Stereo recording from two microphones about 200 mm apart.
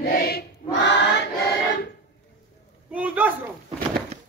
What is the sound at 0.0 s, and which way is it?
Choir, 50° left (ahead or behind).